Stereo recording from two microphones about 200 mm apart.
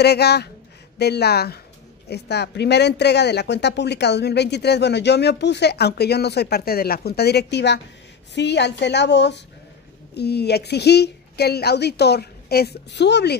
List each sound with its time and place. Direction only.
0.0 s speech: 55° left (ahead or behind)